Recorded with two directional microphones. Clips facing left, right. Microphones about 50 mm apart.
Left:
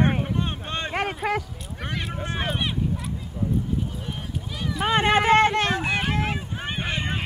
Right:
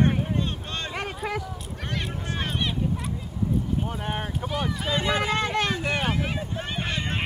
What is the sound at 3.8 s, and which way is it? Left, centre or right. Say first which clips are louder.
Clip-clop: right 3 dB; right.